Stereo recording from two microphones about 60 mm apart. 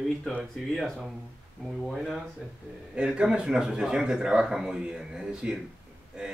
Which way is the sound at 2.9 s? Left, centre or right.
Centre.